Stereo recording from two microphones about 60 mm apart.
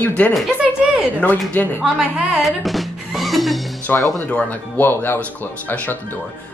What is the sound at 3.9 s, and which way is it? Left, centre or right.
Speech, left.